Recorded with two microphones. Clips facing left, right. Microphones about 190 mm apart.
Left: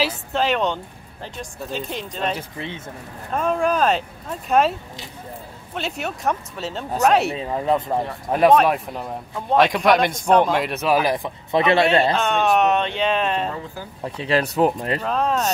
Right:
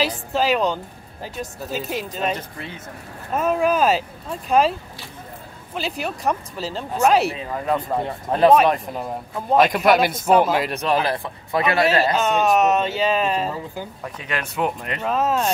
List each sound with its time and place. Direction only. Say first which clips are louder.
0.3 s speech: right 2 dB; centre (ahead or behind)
3.3 s speech: right 1 dB; 5° right (ahead or behind)
5.8 s speech: right 1 dB; centre (ahead or behind)
7.3 s speech: left 2 dB; 25° left (ahead or behind)
8.5 s speech: right 1 dB; centre (ahead or behind); by 11.8 s 25° left (ahead or behind)
11.8 s speech: left 1 dB; centre (ahead or behind)
14.0 s speech: left 10 dB; 30° left (ahead or behind)
15.0 s speech: right 1 dB; 5° right (ahead or behind)